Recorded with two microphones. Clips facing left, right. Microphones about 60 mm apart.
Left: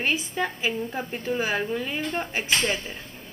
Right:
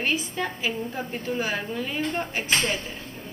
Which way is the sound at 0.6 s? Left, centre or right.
Centre.